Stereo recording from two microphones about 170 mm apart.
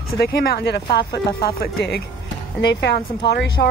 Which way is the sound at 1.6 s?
75° left (ahead or behind).